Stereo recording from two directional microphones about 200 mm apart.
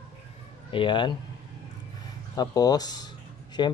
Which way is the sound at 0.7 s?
25° left (ahead or behind).